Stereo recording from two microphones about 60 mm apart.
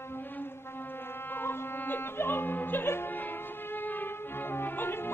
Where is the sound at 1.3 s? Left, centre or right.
Left.